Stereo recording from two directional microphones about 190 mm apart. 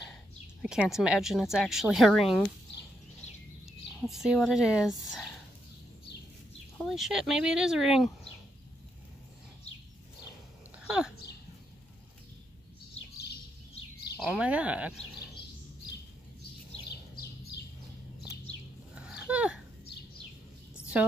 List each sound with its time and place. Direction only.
0.6 s a woman's voice: 5° right (ahead or behind)
3.6 s speech: centre (ahead or behind)
6.8 s a woman's voice: centre (ahead or behind)
10.8 s dog: 5° right (ahead or behind)
14.2 s speech: 5° right (ahead or behind)
16.8 s bird: 60° left (ahead or behind)
18.9 s a sound: 5° right (ahead or behind)
20.7 s a sound: 5° right (ahead or behind)